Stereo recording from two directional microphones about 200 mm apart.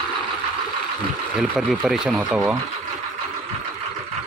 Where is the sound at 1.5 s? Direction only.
Centre (ahead or behind).